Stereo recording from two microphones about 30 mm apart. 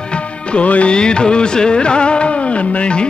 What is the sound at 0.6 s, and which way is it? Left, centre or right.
Music, left.